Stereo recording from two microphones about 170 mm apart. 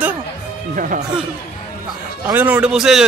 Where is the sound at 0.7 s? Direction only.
50° right (ahead or behind).